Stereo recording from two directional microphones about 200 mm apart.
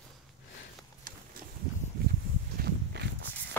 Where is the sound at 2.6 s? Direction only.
55° right (ahead or behind).